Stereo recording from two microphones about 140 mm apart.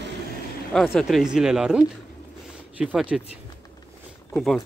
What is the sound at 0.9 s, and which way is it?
Speech, centre (ahead or behind).